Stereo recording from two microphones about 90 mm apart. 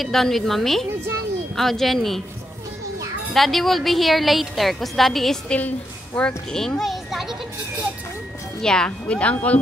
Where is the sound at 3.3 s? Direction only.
Centre (ahead or behind).